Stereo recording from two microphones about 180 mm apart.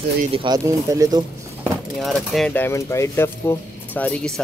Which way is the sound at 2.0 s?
Centre (ahead or behind).